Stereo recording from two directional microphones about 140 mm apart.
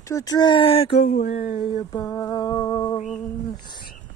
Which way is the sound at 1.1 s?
65° left (ahead or behind).